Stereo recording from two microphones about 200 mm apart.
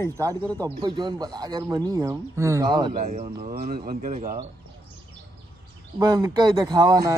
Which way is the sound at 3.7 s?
45° right (ahead or behind).